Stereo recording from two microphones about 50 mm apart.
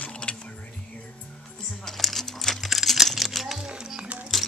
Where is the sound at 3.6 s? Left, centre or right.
Centre.